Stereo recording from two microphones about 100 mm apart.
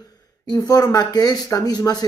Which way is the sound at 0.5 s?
40° left (ahead or behind).